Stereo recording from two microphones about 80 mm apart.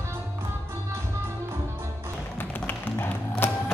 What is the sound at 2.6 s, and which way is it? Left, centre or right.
Tap, left.